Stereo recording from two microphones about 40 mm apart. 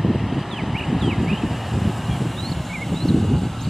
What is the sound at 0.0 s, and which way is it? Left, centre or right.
Vehicle, centre.